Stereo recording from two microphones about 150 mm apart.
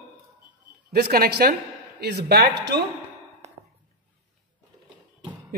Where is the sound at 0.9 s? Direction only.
90° right.